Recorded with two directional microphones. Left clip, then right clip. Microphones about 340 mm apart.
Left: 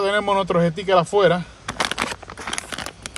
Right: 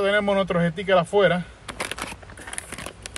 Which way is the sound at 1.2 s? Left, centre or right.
Centre.